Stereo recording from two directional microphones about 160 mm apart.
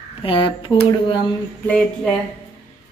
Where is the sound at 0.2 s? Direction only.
35° left (ahead or behind).